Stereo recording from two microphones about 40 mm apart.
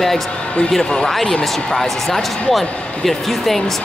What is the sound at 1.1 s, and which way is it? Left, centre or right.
Speech, centre.